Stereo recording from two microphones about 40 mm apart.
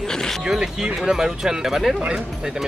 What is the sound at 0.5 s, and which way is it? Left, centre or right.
Speech, centre.